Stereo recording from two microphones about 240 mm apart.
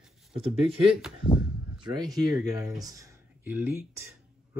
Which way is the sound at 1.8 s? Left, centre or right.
Centre.